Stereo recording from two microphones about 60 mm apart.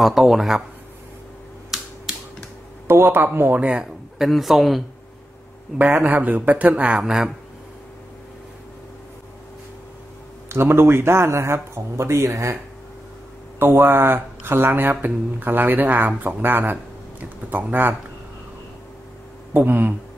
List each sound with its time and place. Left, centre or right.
0.0 s speech: centre
2.9 s speech: right
3.3 s speech: right
3.6 s a man's voice: centre
4.2 s speech: centre
5.8 s speech: right; by 7.3 s centre
10.5 s speech: right
13.6 s speech: right
19.5 s speech: right